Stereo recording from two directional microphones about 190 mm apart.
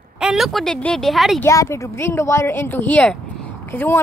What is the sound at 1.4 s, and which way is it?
Speech, 15° left (ahead or behind).